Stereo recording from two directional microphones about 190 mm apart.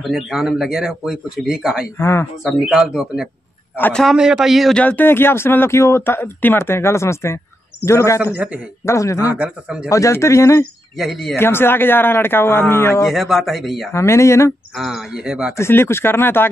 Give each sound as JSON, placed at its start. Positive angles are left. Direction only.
{"t": 0.0, "sound": "a man's voice", "side_deg": 0}
{"t": 2.0, "sound": "a man's voice", "side_deg": 15}
{"t": 2.4, "sound": "a man's voice", "side_deg": 0}
{"t": 9.3, "sound": "a man's voice", "side_deg": -5}
{"t": 9.8, "sound": "a man's voice", "side_deg": 15}
{"t": 11.0, "sound": "a man's voice", "side_deg": 0}
{"t": 11.3, "sound": "a man's voice", "side_deg": 10}
{"t": 13.0, "sound": "a man's voice", "side_deg": 0}
{"t": 13.9, "sound": "a man's voice", "side_deg": 15}
{"t": 14.8, "sound": "a man's voice", "side_deg": 0}
{"t": 15.5, "sound": "a man's voice", "side_deg": 15}